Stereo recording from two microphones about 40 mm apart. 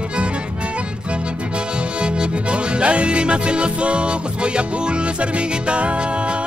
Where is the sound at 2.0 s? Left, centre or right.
Right.